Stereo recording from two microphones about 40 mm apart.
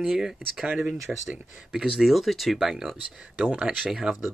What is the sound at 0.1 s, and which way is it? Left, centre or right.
Speech, centre.